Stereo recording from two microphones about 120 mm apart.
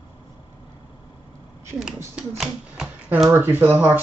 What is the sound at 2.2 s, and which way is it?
Typewriter, 5° right (ahead or behind).